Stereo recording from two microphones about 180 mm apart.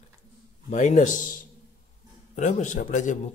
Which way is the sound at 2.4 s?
45° left (ahead or behind).